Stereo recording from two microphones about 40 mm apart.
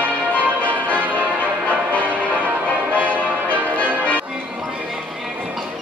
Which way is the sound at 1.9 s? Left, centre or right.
Left.